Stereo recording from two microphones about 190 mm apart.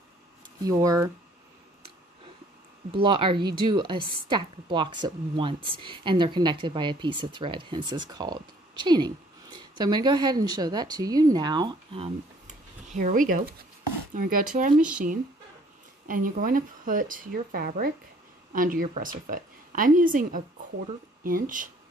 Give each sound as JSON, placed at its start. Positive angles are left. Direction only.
{"t": 0.7, "sound": "speech", "side_deg": -20}
{"t": 2.9, "sound": "a woman's voice", "side_deg": -25}
{"t": 14.8, "sound": "speech", "side_deg": -5}
{"t": 16.1, "sound": "a woman's voice", "side_deg": -45}